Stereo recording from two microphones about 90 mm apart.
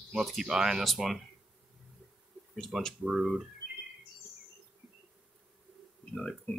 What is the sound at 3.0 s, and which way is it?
Speech, 5° right (ahead or behind).